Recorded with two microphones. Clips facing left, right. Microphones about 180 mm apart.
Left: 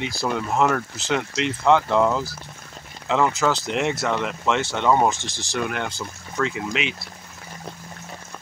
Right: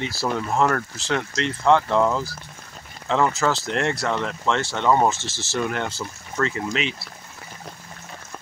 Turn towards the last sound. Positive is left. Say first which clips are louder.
# right 1 dB
turn(degrees=5)  # may be behind; listen again after turning